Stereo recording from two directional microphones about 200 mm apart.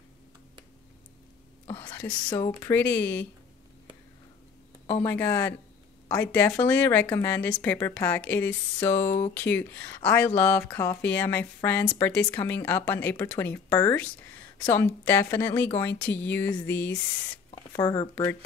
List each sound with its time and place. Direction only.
1.7 s a sound: 10° left (ahead or behind)
2.3 s speech: 15° left (ahead or behind)
4.8 s speech: 10° left (ahead or behind)